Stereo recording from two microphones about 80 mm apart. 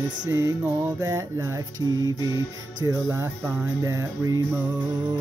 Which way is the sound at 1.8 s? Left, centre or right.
Right.